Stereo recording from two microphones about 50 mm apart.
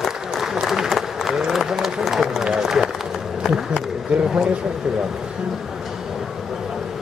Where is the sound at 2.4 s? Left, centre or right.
Centre.